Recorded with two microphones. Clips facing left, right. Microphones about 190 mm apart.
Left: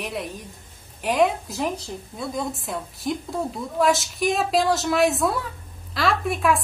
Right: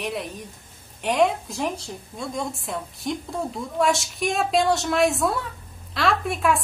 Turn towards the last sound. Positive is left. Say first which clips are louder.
# left 1 dB
turn(degrees=0)  # may be behind; listen again after turning